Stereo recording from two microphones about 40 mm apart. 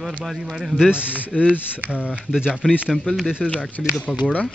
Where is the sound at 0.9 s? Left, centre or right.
Left.